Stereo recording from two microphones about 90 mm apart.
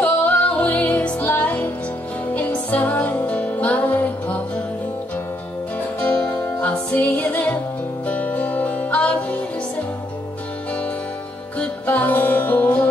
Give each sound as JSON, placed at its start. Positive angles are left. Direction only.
{"t": 0.0, "sound": "music", "side_deg": 15}
{"t": 5.9, "sound": "music", "side_deg": 15}
{"t": 11.5, "sound": "music", "side_deg": 15}